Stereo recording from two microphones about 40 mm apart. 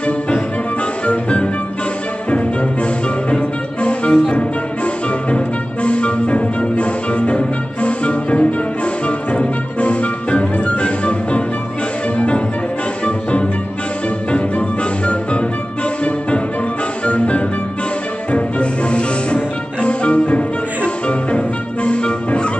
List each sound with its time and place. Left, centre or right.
1.0 s music: left
13.0 s music: left